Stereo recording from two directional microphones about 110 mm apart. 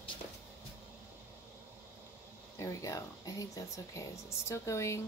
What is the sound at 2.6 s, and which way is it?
Speech, 30° left (ahead or behind).